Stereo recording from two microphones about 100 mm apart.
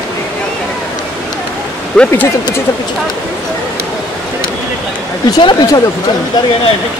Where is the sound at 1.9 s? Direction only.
15° left (ahead or behind).